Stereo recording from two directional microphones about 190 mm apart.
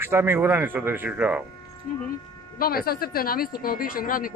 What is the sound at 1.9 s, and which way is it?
A woman's voice, 45° left (ahead or behind).